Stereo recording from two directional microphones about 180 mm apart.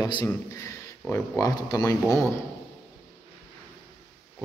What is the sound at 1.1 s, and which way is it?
Speech, 20° left (ahead or behind).